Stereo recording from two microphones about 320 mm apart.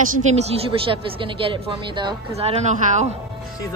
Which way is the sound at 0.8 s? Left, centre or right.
Centre.